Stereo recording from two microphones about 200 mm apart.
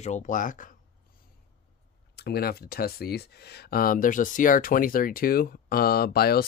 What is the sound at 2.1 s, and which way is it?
Speech, 50° left (ahead or behind).